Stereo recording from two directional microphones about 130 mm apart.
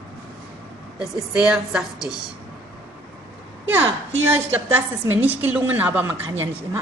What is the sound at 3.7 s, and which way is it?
A woman's voice, 15° right (ahead or behind).